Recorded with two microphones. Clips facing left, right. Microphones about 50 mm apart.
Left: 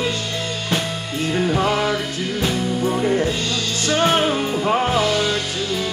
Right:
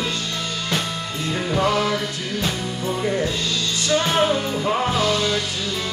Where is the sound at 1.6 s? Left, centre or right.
Centre.